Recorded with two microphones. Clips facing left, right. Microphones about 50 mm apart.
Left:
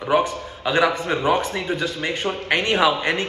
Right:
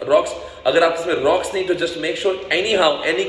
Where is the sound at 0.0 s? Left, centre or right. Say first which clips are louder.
Right 4 dB; centre.